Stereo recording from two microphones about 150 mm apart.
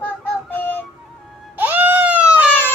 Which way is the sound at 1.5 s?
10° right (ahead or behind).